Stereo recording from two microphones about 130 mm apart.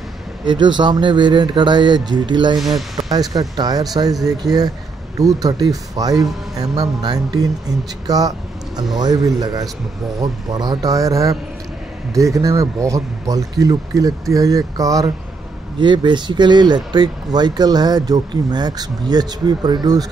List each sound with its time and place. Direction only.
0.5 s speech: 35° right (ahead or behind)
15.8 s speech: 35° right (ahead or behind)